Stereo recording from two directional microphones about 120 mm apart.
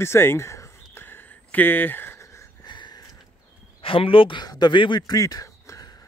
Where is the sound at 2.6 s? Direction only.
40° left (ahead or behind).